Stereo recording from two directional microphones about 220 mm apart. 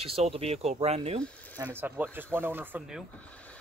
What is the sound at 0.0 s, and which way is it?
Speech, 25° right (ahead or behind).